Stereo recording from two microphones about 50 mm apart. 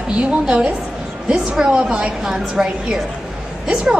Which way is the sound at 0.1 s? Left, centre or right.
Right.